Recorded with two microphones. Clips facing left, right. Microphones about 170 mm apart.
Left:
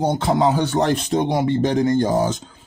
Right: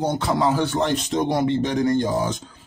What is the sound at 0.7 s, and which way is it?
Speech, 45° left (ahead or behind).